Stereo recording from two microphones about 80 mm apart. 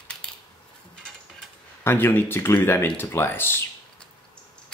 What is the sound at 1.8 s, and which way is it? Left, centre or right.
Speech, left.